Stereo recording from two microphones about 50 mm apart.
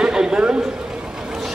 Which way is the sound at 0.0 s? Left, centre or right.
Centre.